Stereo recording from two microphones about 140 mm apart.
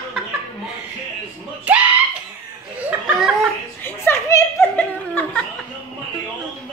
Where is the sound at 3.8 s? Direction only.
15° left (ahead or behind).